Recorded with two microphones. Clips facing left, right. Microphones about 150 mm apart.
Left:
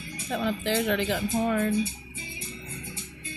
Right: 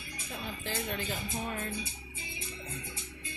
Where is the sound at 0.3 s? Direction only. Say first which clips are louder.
Left 12 dB; 90° left.